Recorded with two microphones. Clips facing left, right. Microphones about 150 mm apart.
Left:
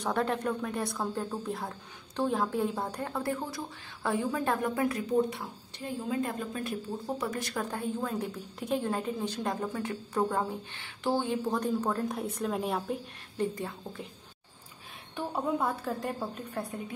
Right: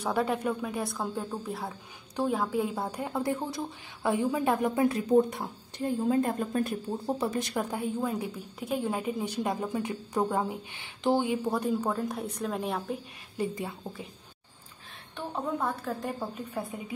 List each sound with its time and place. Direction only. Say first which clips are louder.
0.0 s a woman's voice: right 1 dB; 5° right (ahead or behind); by 5.0 s 25° right (ahead or behind)
5.3 s a woman's voice: right 3 dB; 50° right (ahead or behind)
7.2 s a woman's voice: right 3 dB; 25° right (ahead or behind); by 13.0 s centre (ahead or behind)
13.4 s a woman's voice: even; 10° right (ahead or behind)
15.1 s a woman's voice: left 2 dB; 10° left (ahead or behind)